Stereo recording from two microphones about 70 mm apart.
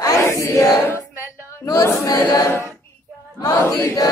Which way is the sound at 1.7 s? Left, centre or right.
Left.